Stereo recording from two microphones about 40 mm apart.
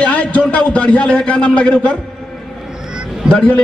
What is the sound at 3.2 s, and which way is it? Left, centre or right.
Speech, left.